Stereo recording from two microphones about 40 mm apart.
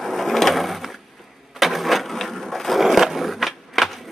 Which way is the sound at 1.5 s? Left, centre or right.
Centre.